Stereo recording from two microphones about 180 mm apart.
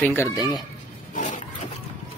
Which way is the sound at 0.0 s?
15° left (ahead or behind).